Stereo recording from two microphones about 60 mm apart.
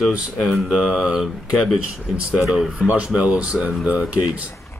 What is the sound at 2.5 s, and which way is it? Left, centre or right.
Speech, centre.